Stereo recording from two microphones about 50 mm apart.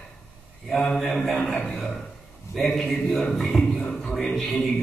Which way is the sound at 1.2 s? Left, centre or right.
Centre.